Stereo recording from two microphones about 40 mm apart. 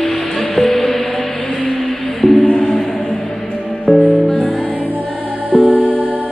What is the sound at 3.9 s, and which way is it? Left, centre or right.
Music, centre.